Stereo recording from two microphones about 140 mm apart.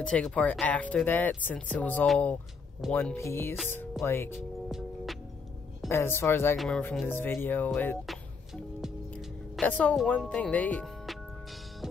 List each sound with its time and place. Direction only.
0.0 s speech: 5° left (ahead or behind)
4.6 s music: centre (ahead or behind)
5.9 s speech: 15° left (ahead or behind)
9.6 s speech: 10° left (ahead or behind)